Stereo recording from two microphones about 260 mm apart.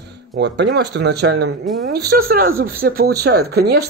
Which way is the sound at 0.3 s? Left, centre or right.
Right.